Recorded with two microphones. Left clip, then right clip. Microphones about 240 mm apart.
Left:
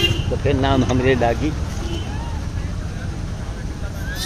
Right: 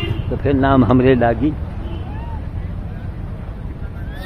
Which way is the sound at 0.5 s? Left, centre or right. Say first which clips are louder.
Right 5 dB; right.